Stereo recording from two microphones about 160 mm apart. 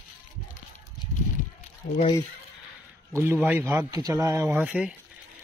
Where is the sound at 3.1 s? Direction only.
15° right (ahead or behind).